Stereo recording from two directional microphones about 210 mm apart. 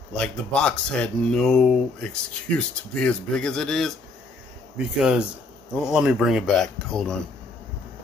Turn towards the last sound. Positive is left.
turn(degrees=0)  # may be behind; listen again after turning